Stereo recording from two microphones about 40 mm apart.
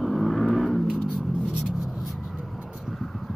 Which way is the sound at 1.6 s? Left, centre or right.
Centre.